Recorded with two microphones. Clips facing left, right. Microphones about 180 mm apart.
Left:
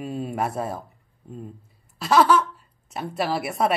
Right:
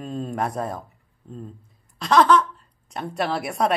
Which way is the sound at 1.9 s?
5° left (ahead or behind).